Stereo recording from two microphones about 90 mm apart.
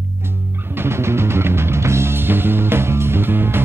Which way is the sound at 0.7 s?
30° right (ahead or behind).